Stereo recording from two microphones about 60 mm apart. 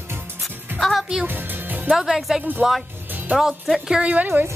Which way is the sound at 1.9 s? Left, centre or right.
Centre.